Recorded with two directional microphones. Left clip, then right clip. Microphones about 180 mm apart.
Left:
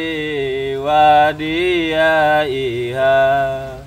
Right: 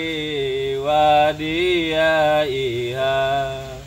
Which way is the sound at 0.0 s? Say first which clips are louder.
Left 3 dB; 15° left (ahead or behind).